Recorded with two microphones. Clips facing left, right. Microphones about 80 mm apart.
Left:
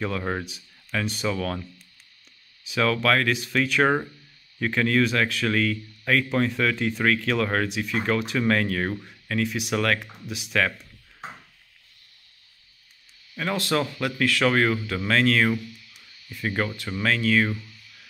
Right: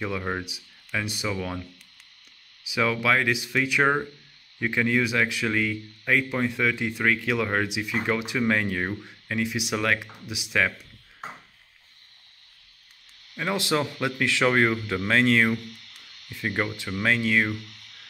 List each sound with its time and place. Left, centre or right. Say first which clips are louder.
0.0 s speech: left 1 dB; centre
2.6 s speech: left 2 dB; centre
13.4 s speech: even; centre
15.5 s a sound: left 1 dB; right
17.0 s speech: left 1 dB; centre
17.5 s a sound: even; right